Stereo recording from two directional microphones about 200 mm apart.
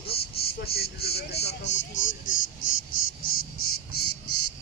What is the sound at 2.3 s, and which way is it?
Insect, 80° left.